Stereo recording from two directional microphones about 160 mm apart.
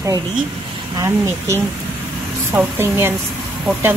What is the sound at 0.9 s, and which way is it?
A woman's voice, 15° right (ahead or behind).